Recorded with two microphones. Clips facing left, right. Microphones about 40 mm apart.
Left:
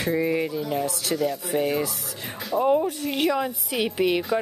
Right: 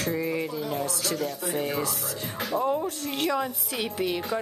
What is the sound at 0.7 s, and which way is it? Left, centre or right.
A woman's voice, left.